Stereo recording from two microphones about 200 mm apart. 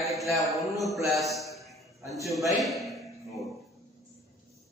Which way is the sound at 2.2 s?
Centre (ahead or behind).